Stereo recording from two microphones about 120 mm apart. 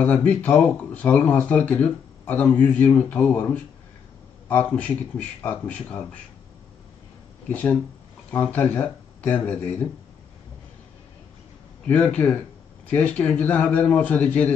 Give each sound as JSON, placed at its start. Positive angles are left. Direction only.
{"t": 0.0, "sound": "speech", "side_deg": 10}
{"t": 7.4, "sound": "speech", "side_deg": 10}
{"t": 11.8, "sound": "speech", "side_deg": 10}